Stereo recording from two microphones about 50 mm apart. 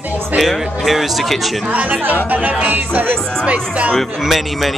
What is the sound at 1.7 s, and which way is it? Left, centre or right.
Speech, right.